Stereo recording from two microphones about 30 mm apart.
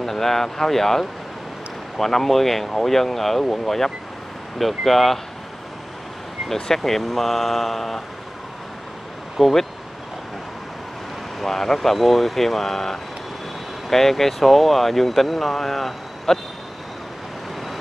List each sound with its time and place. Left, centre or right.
0.0 s speech: centre
6.5 s speech: centre
9.4 s speech: centre
11.3 s speech: centre